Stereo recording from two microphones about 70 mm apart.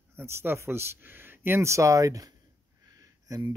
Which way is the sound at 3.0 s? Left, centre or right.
Right.